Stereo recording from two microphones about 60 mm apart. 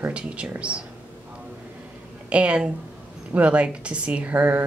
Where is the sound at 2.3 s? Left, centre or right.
Centre.